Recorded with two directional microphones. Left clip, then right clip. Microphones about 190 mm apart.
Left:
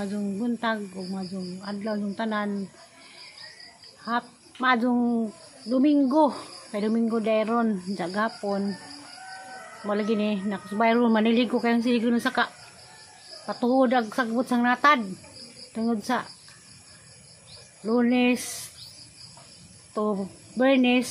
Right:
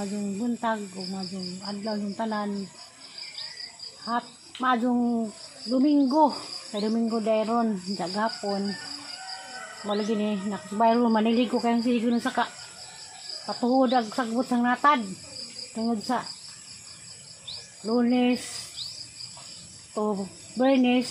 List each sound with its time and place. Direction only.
0.0 s cricket: 30° left (ahead or behind)
4.0 s speech: 25° left (ahead or behind)
5.7 s cricket: 25° left (ahead or behind)
9.9 s cricket: 20° left (ahead or behind)
13.5 s cricket: 30° left (ahead or behind)
17.8 s cricket: 20° left (ahead or behind)
19.9 s speech: 25° left (ahead or behind)